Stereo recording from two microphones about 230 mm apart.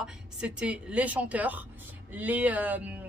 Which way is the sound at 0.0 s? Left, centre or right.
Centre.